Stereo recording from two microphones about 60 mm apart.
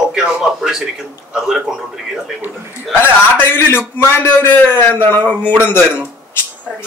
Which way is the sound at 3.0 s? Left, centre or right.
Left.